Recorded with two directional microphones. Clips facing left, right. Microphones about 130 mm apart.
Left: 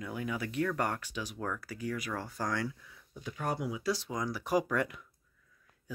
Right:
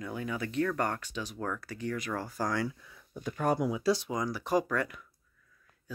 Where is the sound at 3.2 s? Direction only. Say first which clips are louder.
Right 6 dB; 50° right (ahead or behind).